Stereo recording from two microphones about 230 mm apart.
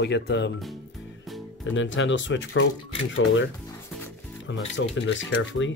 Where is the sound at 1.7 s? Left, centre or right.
Left.